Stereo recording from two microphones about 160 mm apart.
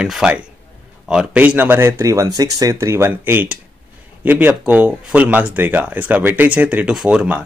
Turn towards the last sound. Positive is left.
turn(degrees=-5)  # may be behind; listen again after turning